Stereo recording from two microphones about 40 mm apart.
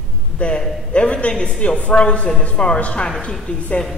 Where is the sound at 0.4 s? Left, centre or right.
Left.